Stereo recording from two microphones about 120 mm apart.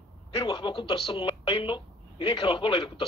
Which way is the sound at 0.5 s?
45° left (ahead or behind).